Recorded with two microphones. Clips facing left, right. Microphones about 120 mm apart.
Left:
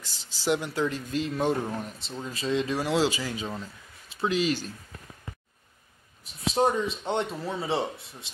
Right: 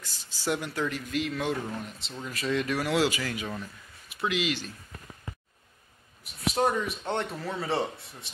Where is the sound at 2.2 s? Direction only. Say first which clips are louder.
Left 1 dB; 25° left (ahead or behind).